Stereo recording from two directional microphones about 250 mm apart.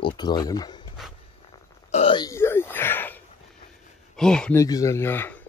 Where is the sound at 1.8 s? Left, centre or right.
Left; by 3.2 s centre.